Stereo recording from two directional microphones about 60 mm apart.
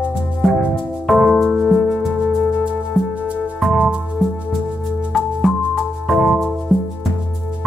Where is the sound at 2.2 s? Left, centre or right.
Centre.